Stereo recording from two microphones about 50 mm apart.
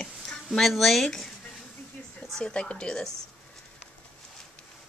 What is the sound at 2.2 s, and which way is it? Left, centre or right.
Speech, centre.